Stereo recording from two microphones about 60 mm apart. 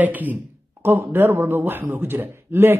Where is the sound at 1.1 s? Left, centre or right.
Right.